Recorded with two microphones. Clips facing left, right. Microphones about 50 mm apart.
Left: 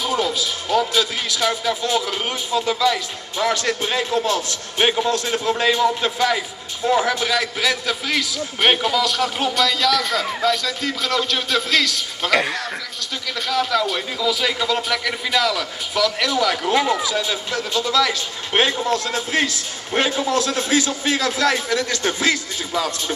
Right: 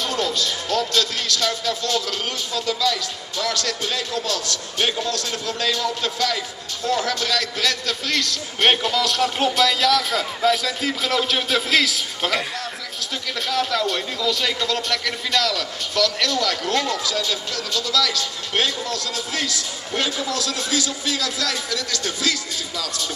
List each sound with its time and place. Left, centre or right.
0.0 s a man's voice: centre
13.5 s a man's voice: centre; by 23.1 s left